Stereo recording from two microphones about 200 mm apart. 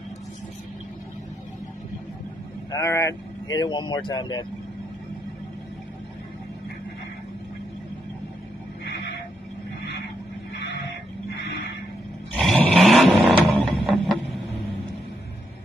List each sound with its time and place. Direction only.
2.7 s speech: 15° left (ahead or behind)
10.5 s vehicle: 60° left (ahead or behind)
12.4 s a sound: 5° left (ahead or behind)